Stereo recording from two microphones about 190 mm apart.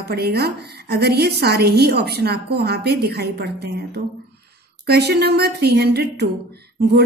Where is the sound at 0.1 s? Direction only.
55° right (ahead or behind).